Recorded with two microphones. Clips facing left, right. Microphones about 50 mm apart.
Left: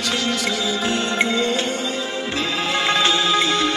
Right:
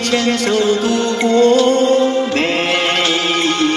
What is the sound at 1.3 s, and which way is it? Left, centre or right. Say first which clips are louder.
Music: right 10 dB; right.